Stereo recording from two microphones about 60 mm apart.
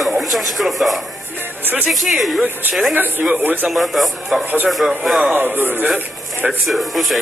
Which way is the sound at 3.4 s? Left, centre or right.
Right.